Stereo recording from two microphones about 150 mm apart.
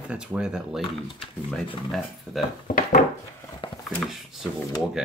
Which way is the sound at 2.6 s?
60° left (ahead or behind).